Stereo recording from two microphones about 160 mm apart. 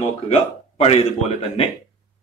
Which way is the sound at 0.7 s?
40° left (ahead or behind).